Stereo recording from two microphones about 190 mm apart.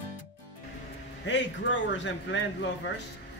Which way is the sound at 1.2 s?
70° left (ahead or behind).